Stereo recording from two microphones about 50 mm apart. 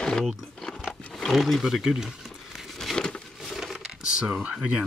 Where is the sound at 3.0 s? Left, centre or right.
Centre.